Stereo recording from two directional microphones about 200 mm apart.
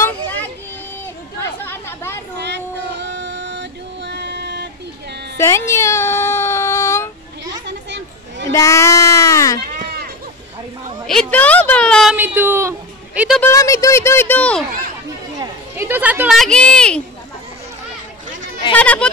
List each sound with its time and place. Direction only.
0.0 s child singing: 10° left (ahead or behind)
1.6 s chatter: 10° left (ahead or behind)
2.3 s child singing: 60° right (ahead or behind)
5.4 s baby cry: 15° left (ahead or behind)
7.6 s children playing: 60° right (ahead or behind)
8.5 s speech: 15° left (ahead or behind)
9.8 s run: 50° right (ahead or behind)
11.1 s a sound: 5° left (ahead or behind)
12.2 s a man's voice: 10° right (ahead or behind)
13.4 s speech: 15° left (ahead or behind)
15.3 s speech: 10° right (ahead or behind); by 17.0 s 5° left (ahead or behind)
18.8 s speech: 5° left (ahead or behind)